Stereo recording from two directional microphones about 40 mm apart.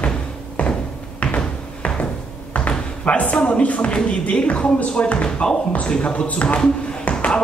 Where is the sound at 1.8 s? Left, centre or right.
Left.